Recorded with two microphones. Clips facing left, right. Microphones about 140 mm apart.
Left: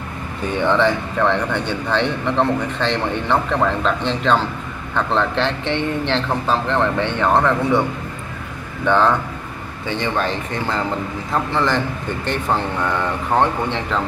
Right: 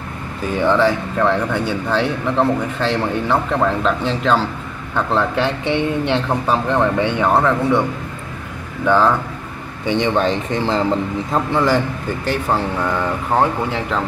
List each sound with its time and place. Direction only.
0.5 s a man's voice: 5° right (ahead or behind)
8.8 s a man's voice: 5° right (ahead or behind)
9.8 s speech: 20° right (ahead or behind)
11.5 s a man's voice: 10° right (ahead or behind)